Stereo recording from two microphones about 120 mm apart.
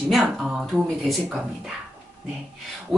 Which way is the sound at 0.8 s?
Centre (ahead or behind).